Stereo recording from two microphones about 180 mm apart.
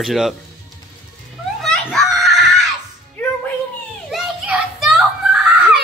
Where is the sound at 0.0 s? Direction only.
Centre (ahead or behind).